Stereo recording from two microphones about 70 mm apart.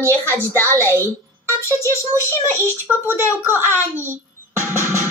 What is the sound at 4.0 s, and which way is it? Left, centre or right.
Music, right.